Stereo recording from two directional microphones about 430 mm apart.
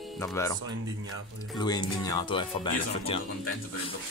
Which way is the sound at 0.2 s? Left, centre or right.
Centre.